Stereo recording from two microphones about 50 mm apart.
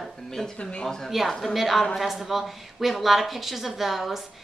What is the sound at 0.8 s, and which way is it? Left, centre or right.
Speech, centre.